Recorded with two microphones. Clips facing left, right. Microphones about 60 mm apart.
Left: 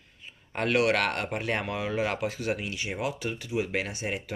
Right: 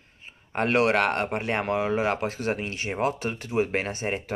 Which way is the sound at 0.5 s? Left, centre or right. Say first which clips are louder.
Right 3 dB; right.